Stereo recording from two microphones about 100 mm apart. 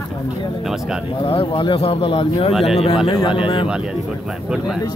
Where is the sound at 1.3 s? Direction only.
65° left (ahead or behind).